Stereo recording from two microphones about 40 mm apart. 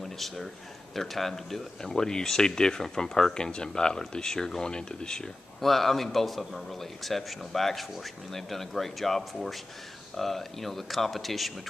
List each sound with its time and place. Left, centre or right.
0.0 s a sound: centre
0.9 s speech: centre
5.6 s speech: centre